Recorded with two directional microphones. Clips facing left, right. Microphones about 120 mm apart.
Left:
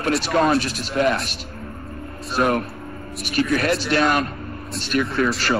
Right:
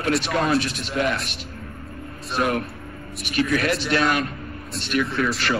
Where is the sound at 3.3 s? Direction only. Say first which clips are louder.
Left 2 dB; 40° left (ahead or behind).